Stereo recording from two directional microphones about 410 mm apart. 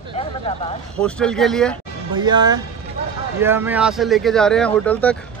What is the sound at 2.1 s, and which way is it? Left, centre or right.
Speech, centre.